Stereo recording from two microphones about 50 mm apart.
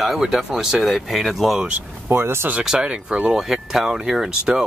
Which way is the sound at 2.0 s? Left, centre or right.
Right.